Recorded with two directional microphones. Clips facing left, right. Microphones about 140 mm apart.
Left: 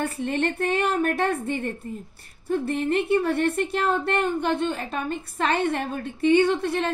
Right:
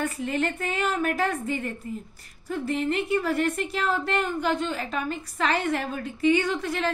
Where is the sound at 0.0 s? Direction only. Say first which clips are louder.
Left 2 dB; 30° left (ahead or behind).